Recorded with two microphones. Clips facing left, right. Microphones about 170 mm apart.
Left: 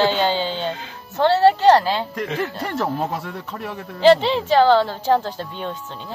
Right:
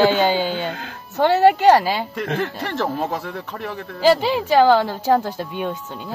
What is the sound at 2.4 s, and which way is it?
Speech, centre (ahead or behind).